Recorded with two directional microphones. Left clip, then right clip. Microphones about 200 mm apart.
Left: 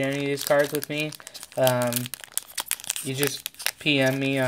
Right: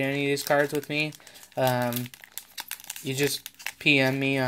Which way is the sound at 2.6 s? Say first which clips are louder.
Left 7 dB; 20° left (ahead or behind).